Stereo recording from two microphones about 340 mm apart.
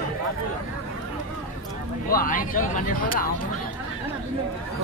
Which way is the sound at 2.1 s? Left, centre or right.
Left.